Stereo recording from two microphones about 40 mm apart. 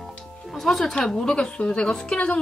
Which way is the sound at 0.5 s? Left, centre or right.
Centre.